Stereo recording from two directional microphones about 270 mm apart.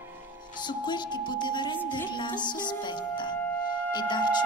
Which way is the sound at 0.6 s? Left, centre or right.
Centre.